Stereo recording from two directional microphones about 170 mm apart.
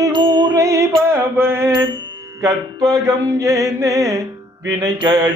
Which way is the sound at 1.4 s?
15° right (ahead or behind).